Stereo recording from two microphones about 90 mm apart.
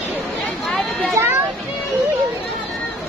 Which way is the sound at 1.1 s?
30° right (ahead or behind).